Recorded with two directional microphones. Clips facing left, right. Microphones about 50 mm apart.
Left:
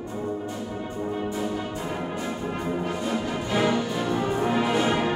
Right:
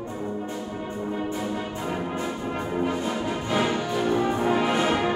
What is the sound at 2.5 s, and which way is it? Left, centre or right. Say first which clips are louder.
Brass instrument: right 3 dB; centre.